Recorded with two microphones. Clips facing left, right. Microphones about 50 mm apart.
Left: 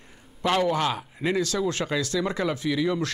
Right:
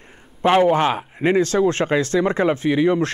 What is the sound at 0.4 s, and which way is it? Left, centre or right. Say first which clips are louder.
Speech: right 8 dB; right.